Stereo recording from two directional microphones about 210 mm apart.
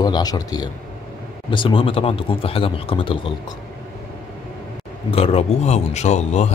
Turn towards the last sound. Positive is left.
turn(degrees=30)  # may be behind; listen again after turning